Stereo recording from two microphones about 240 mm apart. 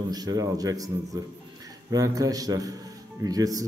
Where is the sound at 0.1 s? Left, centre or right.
Centre.